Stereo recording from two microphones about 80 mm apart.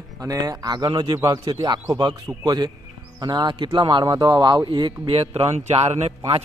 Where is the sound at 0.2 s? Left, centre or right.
Right.